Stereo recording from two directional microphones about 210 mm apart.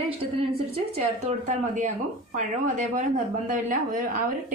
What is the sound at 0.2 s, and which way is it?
A woman's voice, 30° right (ahead or behind).